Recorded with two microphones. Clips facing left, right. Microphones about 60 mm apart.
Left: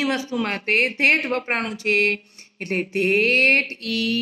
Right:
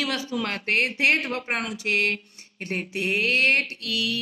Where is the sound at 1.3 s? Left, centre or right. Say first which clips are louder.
Left 4 dB; left.